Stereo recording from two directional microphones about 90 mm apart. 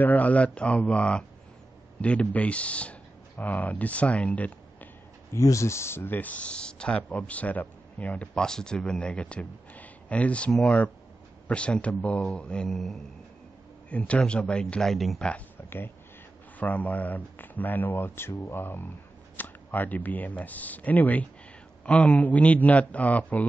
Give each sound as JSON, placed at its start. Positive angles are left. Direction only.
{"t": 0.0, "sound": "speech", "side_deg": 20}
{"t": 5.3, "sound": "speech", "side_deg": 35}
{"t": 12.7, "sound": "a sound", "side_deg": 0}
{"t": 13.8, "sound": "speech", "side_deg": 15}
{"t": 15.2, "sound": "speech", "side_deg": 20}